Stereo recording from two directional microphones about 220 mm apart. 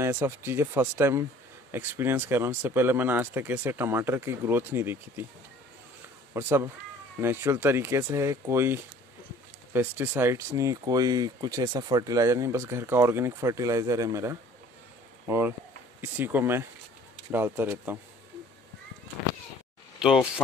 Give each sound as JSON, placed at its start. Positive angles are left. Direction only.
{"t": 0.0, "sound": "speech", "side_deg": -10}
{"t": 6.3, "sound": "speech", "side_deg": -10}
{"t": 20.0, "sound": "speech", "side_deg": -5}